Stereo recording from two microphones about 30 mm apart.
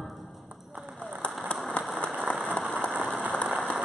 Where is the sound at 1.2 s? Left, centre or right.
Left.